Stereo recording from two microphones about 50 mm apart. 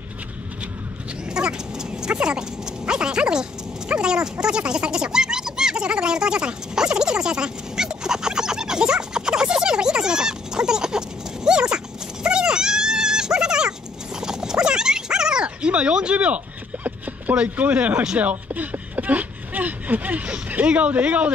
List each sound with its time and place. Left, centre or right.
1.3 s speech: centre
14.2 s dog: centre
16.8 s a sound: right
17.4 s speech: right